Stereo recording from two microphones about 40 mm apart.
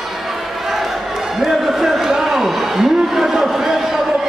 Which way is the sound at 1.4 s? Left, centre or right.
Centre.